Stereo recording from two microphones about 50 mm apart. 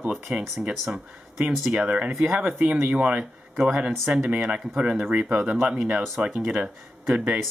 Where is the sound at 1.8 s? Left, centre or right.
Right.